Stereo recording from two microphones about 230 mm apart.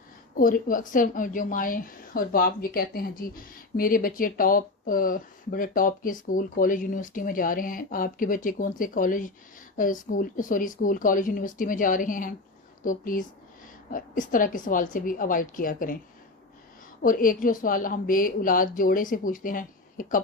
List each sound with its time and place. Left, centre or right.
0.4 s a woman's voice: left
17.0 s a woman's voice: left